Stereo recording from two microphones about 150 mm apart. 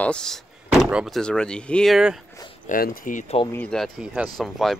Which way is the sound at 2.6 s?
70° left (ahead or behind).